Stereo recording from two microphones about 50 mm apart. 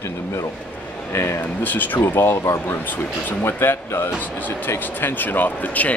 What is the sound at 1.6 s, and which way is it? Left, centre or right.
Speech, left.